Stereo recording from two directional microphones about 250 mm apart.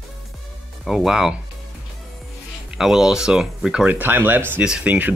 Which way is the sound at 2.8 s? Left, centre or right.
Centre.